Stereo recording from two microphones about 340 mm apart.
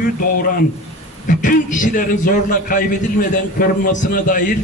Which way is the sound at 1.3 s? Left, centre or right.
Left.